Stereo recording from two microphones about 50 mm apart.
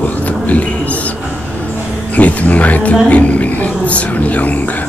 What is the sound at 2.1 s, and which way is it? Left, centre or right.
Speech, left.